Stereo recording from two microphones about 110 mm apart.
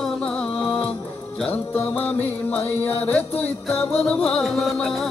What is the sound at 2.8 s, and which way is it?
Music, 15° left (ahead or behind).